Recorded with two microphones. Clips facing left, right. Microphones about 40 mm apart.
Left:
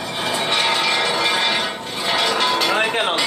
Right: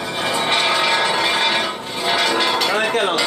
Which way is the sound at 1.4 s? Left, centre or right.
Centre.